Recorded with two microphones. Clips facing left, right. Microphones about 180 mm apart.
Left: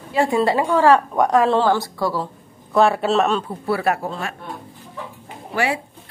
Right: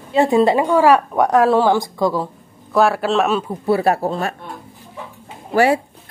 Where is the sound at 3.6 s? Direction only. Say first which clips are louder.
Right 5 dB; 30° right (ahead or behind).